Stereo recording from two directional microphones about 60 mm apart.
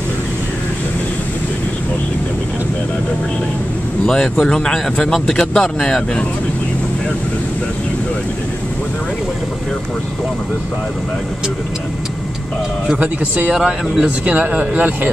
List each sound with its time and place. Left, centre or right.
4.0 s speech: centre
12.9 s speech: right
13.5 s speech: centre
14.2 s speech: right